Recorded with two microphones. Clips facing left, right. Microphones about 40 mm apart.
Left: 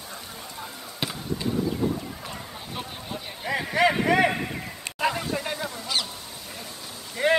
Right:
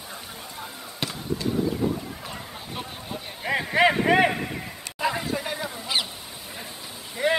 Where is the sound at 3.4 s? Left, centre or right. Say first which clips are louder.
Right 2 dB; centre.